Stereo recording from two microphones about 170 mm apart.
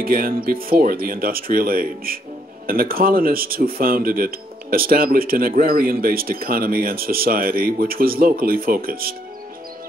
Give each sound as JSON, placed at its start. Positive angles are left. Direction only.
{"t": 0.0, "sound": "speech", "side_deg": -60}